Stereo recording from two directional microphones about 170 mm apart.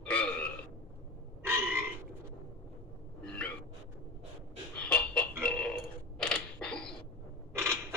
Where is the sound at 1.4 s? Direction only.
15° right (ahead or behind).